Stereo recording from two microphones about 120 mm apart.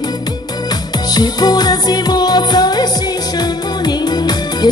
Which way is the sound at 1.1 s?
35° left (ahead or behind).